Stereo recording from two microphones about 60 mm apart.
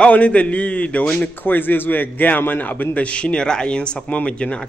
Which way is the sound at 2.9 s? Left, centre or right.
Centre.